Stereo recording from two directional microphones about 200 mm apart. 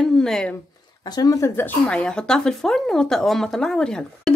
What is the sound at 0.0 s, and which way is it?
Speech, 5° left (ahead or behind).